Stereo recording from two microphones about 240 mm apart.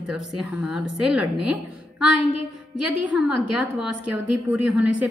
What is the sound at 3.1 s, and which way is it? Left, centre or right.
A woman's voice, centre.